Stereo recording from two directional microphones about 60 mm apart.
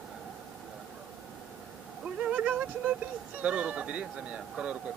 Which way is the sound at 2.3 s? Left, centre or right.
Centre.